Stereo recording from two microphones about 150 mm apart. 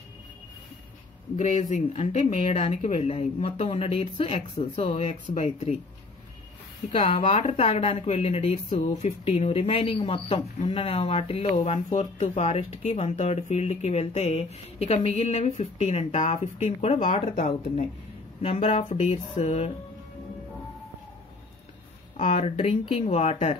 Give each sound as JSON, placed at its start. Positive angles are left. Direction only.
{"t": 1.3, "sound": "speech", "side_deg": 50}
{"t": 5.2, "sound": "speech", "side_deg": 55}
{"t": 6.9, "sound": "speech", "side_deg": 40}
{"t": 18.4, "sound": "speech", "side_deg": 45}
{"t": 22.2, "sound": "speech", "side_deg": 40}